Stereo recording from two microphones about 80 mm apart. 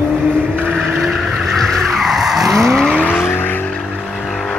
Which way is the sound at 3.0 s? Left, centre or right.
Left.